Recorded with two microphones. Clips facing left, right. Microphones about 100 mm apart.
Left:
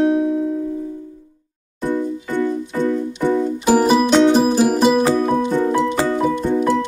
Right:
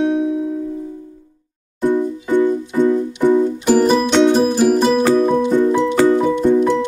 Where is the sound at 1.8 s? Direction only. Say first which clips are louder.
Right 4 dB; 15° right (ahead or behind).